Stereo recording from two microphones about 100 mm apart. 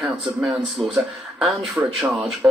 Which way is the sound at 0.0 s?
5° right (ahead or behind).